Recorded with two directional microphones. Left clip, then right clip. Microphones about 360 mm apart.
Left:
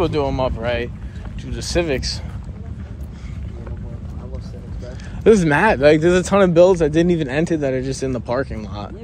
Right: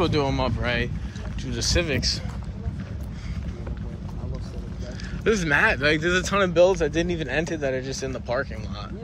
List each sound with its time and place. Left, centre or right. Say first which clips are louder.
0.0 s speech: left 4 dB; centre
5.2 s speech: left 7 dB; centre